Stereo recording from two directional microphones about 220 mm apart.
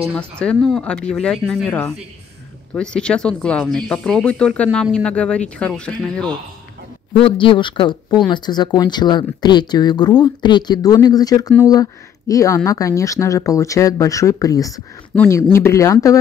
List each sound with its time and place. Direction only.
0.1 s speech: 5° left (ahead or behind)
7.2 s speech: 25° left (ahead or behind)